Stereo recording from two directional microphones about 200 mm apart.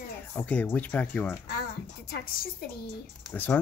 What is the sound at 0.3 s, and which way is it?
Speech, 10° left (ahead or behind).